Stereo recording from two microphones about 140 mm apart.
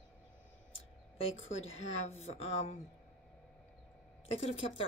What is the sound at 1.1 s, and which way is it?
A woman's voice, 45° left (ahead or behind).